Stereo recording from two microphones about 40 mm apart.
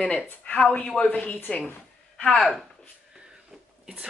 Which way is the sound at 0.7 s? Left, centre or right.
Left.